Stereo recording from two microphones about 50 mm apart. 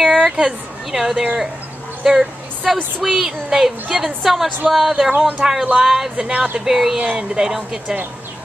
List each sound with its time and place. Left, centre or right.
0.0 s speech: centre
6.3 s speech: right
6.6 s speech: centre